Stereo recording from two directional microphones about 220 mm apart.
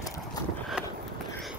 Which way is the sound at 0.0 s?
15° left (ahead or behind).